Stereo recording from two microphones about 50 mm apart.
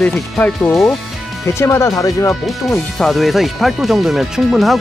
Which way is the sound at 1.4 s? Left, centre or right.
Left.